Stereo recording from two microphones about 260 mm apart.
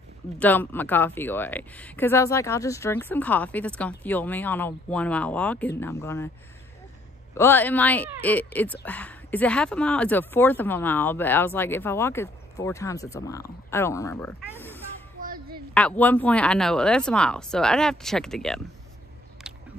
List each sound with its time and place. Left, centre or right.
0.4 s speech: centre
7.3 s speech: centre
15.1 s a sound: right
15.7 s speech: centre